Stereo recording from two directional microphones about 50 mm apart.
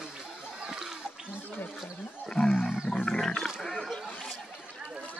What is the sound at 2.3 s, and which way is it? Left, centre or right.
Roaring cats, centre.